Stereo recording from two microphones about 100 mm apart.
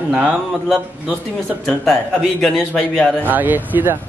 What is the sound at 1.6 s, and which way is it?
A man's voice, 5° left (ahead or behind).